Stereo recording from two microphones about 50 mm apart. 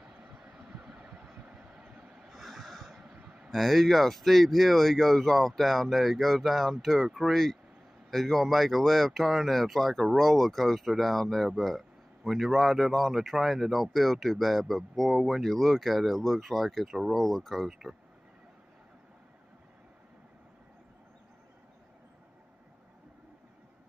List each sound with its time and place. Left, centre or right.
0.9 s vehicle: centre
2.3 s snort: centre
3.5 s speech: centre
17.6 s speech: centre